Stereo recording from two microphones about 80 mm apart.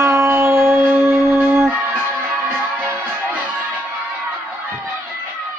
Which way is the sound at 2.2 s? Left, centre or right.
Right.